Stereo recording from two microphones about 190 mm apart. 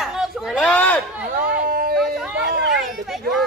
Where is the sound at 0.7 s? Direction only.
10° left (ahead or behind).